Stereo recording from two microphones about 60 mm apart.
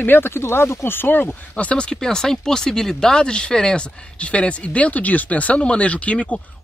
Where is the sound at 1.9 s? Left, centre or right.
Centre.